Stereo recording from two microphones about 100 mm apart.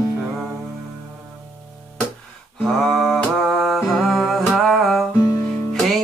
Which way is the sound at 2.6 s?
Centre (ahead or behind).